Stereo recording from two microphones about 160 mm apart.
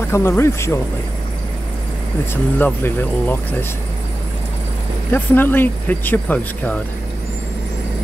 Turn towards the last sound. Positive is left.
turn(degrees=10)  # may be behind; listen again after turning